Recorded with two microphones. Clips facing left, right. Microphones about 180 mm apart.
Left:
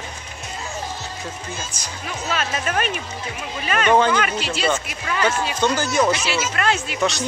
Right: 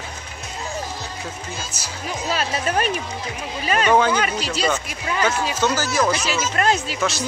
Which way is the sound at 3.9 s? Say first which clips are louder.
Left 1 dB; 10° right (ahead or behind).